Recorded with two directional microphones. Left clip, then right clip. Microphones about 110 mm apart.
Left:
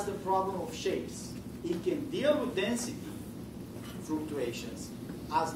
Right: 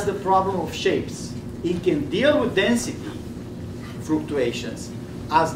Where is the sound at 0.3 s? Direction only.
5° right (ahead or behind).